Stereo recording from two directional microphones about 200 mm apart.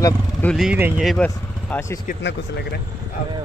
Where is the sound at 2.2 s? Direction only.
60° left (ahead or behind).